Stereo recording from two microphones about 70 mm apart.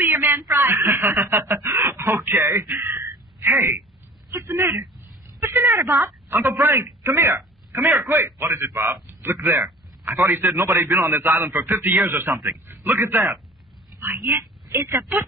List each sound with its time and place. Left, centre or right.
0.0 s a man's voice: right